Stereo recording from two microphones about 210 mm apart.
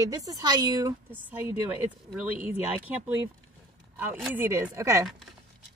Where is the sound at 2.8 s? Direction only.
10° right (ahead or behind).